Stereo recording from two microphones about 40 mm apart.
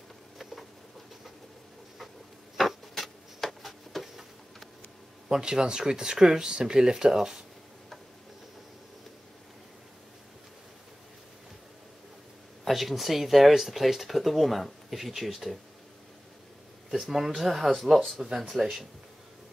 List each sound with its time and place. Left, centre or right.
2.5 s a sound: centre
5.3 s speech: centre
12.6 s speech: centre
17.0 s speech: centre